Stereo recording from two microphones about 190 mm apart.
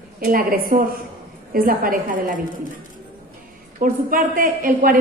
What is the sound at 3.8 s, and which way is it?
A woman's voice, 45° right (ahead or behind).